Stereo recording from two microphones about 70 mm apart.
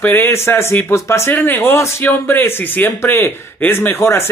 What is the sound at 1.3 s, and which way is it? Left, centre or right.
Speech, left.